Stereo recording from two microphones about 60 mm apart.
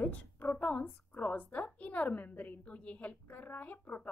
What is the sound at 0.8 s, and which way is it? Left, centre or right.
A woman's voice, left.